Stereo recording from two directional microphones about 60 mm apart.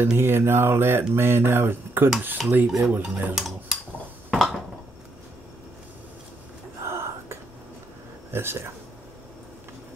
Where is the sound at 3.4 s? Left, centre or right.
Centre.